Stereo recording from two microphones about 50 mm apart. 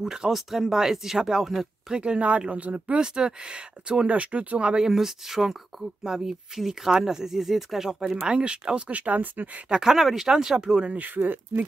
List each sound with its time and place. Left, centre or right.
0.0 s speech: centre
2.0 s speech: right
4.1 s speech: right
4.8 s speech: centre; by 9.5 s right
9.7 s speech: centre
10.9 s speech: right